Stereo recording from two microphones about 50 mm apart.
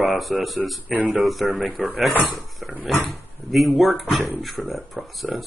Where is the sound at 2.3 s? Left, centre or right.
Centre.